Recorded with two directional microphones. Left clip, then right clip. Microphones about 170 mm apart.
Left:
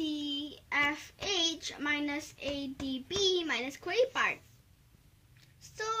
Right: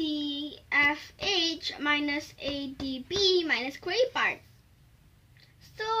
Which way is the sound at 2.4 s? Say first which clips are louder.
Right 3 dB; 35° left (ahead or behind).